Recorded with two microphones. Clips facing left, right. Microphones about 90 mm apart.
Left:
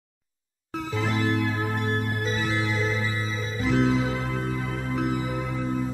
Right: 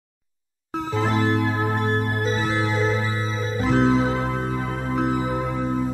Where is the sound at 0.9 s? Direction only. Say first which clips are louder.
Right 4 dB; 35° right (ahead or behind).